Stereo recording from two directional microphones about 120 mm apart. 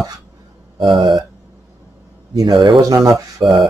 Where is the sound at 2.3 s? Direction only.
40° right (ahead or behind).